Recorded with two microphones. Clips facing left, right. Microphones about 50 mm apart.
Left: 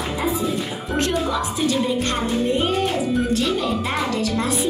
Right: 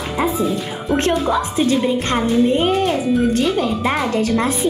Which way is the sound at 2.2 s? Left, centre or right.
Centre.